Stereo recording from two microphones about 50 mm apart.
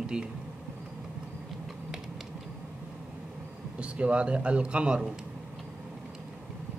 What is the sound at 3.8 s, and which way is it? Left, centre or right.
A man's voice, right.